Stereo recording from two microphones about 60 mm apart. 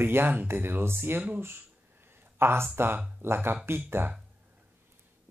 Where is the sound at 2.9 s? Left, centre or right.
Right.